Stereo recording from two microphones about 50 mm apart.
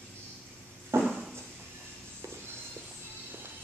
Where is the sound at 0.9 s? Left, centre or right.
Right.